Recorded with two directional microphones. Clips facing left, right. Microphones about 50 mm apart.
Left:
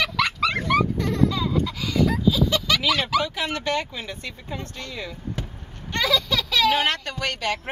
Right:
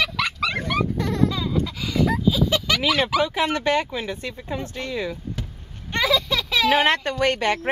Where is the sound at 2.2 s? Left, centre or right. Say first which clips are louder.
Even; right.